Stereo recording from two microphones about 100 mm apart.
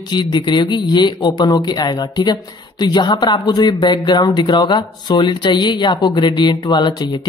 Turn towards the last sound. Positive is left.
turn(degrees=50)  # may be behind; listen again after turning